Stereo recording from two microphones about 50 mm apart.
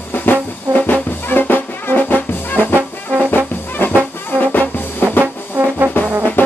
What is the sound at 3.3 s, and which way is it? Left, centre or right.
Brass instrument, left.